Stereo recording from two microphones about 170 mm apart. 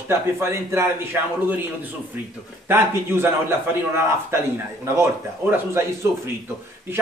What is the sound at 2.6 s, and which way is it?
Speech, 15° right (ahead or behind).